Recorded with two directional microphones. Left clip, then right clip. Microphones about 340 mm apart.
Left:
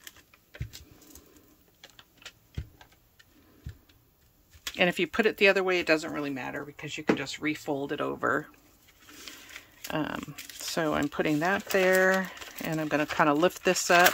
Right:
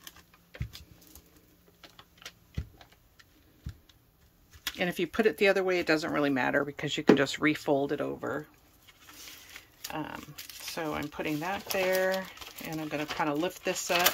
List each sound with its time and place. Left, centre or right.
4.6 s speech: centre
9.3 s a sound: centre
9.8 s speech: centre